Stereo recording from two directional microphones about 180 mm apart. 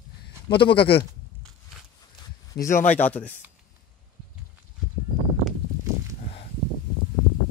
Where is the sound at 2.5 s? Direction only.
15° left (ahead or behind).